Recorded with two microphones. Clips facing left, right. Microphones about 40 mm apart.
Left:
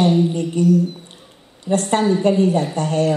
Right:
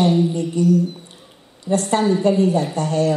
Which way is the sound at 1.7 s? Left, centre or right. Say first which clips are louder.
Left 1 dB; left.